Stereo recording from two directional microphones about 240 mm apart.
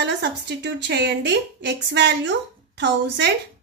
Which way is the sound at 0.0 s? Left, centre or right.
Right.